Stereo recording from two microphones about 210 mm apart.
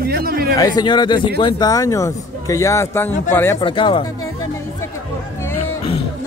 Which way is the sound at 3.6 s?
25° left (ahead or behind).